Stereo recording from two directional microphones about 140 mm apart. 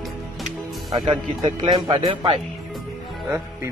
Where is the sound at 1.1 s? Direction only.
35° right (ahead or behind).